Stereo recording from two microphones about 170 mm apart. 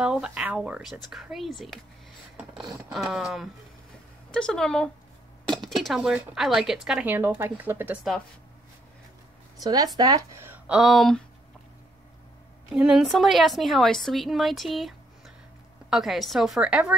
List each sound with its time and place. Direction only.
0.0 s speech: 5° right (ahead or behind)
9.6 s speech: 20° right (ahead or behind); by 11.2 s centre (ahead or behind)
12.7 s speech: 5° right (ahead or behind)